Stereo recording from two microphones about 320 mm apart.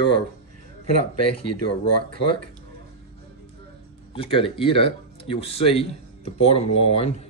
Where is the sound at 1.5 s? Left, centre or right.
Left.